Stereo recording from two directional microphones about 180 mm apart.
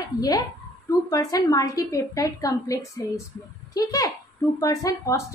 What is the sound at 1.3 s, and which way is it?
A woman's voice, 20° left (ahead or behind).